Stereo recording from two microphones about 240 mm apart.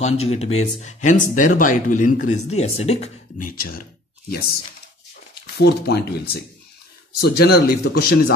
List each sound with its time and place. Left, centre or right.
0.0 s speech: left
5.3 s speech: left